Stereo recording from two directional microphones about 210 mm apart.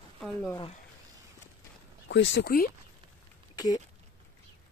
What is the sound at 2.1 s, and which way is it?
Speech, 55° left (ahead or behind).